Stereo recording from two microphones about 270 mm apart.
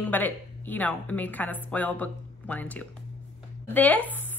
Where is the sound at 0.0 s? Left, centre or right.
Centre.